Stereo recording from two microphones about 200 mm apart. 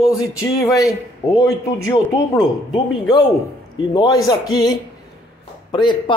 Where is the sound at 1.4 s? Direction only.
15° left (ahead or behind).